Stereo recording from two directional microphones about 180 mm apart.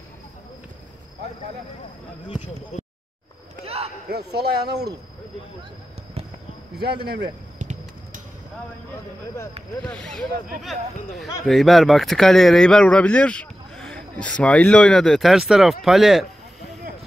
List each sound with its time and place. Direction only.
2.2 s speech: 35° left (ahead or behind)
3.6 s a sound: 35° right (ahead or behind)
4.1 s speech: 65° right (ahead or behind)
6.7 s speech: 65° right (ahead or behind)
7.5 s a sound: 45° right (ahead or behind)
9.8 s speech: 5° left (ahead or behind)